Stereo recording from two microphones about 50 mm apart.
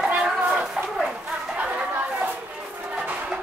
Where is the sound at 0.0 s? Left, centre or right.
Centre.